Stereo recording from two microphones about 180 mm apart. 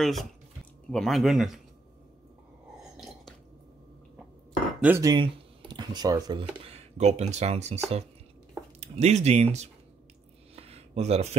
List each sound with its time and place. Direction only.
0.0 s speech: centre (ahead or behind)
2.8 s a sound: centre (ahead or behind)
4.8 s speech: 15° right (ahead or behind)
5.1 s speech: 25° right (ahead or behind)
6.6 s speech: 35° right (ahead or behind)
10.5 s a sound: 35° right (ahead or behind)